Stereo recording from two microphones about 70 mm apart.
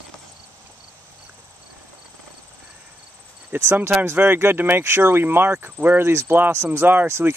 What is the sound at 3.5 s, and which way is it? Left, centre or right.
Speech, right.